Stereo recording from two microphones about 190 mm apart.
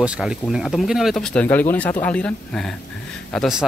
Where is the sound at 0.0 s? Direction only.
5° right (ahead or behind).